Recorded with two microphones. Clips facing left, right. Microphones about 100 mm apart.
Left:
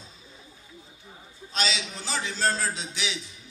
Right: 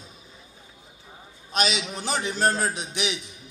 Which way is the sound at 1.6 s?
15° right (ahead or behind).